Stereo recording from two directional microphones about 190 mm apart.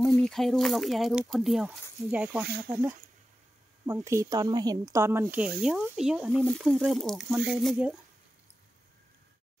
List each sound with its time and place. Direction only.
0.0 s speech: centre (ahead or behind)
2.4 s speech: 55° right (ahead or behind)
3.8 s speech: 15° right (ahead or behind)